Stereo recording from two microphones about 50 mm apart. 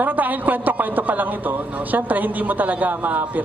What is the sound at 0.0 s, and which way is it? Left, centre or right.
Speech, right.